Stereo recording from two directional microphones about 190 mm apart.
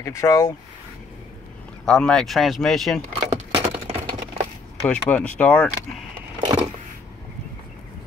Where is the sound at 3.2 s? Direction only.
35° right (ahead or behind).